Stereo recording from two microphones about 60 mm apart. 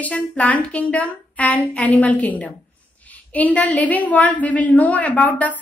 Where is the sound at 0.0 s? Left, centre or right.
Left.